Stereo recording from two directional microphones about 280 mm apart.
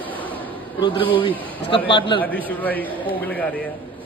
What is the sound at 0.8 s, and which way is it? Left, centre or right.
A man's voice, centre.